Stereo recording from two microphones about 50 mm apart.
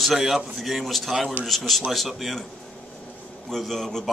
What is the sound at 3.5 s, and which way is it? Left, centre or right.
Speech, centre.